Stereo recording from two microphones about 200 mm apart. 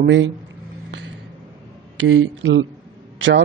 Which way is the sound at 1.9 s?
70° right (ahead or behind).